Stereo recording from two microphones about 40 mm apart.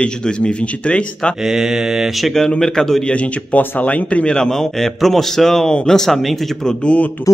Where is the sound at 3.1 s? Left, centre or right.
Left.